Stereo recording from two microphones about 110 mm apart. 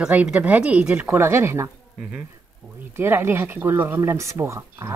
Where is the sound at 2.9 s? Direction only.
20° right (ahead or behind).